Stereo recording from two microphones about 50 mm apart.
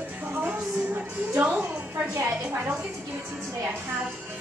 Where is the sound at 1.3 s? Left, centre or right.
Right.